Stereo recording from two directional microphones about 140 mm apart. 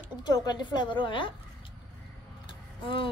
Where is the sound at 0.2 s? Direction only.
30° left (ahead or behind).